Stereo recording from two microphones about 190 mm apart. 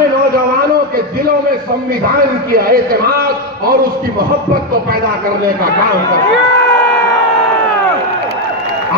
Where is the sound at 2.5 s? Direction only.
50° right (ahead or behind).